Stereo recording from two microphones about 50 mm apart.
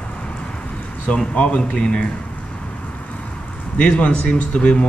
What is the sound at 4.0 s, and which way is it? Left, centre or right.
Speech, left.